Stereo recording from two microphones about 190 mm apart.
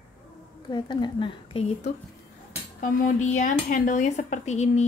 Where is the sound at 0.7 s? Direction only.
25° left (ahead or behind).